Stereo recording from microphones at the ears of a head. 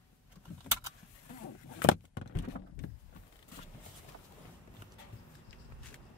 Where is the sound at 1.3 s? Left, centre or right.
Left.